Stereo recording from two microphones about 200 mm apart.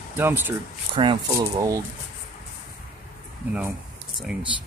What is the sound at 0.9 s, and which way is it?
Speech, 20° right (ahead or behind).